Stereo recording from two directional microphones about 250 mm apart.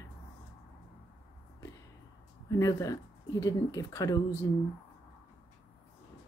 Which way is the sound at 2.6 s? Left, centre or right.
Centre.